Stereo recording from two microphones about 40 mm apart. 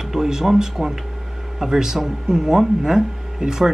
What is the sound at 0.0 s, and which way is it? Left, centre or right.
Speech, centre.